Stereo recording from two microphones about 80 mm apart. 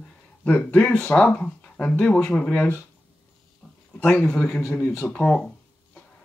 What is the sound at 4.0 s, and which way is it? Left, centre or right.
Speech, centre.